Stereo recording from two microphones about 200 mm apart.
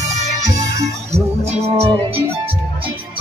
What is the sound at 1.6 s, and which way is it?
Music, 30° right (ahead or behind).